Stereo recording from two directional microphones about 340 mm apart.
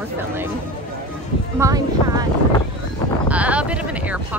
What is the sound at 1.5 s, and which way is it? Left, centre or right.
Speech, centre.